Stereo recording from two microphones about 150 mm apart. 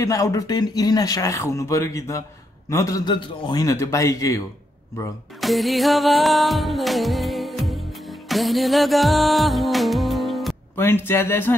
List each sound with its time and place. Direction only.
0.0 s speech: 25° left (ahead or behind)
5.4 s music: centre (ahead or behind)
10.8 s speech: 15° left (ahead or behind)